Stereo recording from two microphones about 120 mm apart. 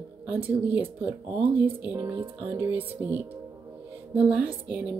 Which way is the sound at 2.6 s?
15° right (ahead or behind).